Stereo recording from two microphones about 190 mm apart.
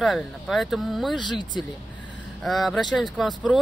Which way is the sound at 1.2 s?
25° left (ahead or behind).